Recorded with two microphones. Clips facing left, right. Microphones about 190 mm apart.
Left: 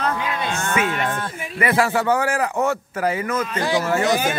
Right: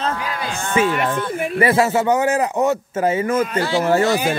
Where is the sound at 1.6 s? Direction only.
25° right (ahead or behind).